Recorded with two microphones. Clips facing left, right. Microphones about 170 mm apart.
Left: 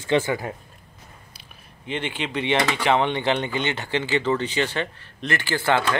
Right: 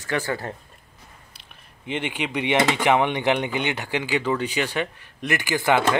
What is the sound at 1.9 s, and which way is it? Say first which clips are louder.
Speech: right 1 dB; 15° right (ahead or behind).